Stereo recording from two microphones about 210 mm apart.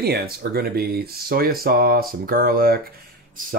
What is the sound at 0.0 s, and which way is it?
Speech, 50° right (ahead or behind).